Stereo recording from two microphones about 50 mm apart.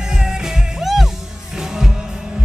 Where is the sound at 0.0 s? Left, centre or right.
Centre.